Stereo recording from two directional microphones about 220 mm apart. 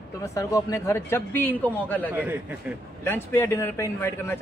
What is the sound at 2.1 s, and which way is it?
Speech, 10° right (ahead or behind).